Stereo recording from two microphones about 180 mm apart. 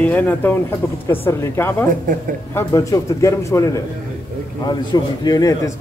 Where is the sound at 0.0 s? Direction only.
10° left (ahead or behind).